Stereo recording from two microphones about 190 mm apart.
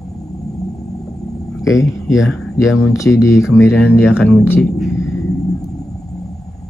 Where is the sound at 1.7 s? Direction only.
15° left (ahead or behind).